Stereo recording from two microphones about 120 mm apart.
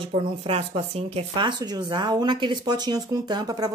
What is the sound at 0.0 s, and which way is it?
Speech, 55° right (ahead or behind).